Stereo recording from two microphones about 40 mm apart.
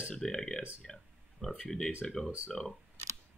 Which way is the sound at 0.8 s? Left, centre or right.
Centre.